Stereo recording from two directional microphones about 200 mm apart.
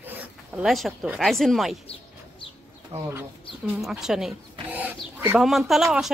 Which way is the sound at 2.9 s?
30° right (ahead or behind).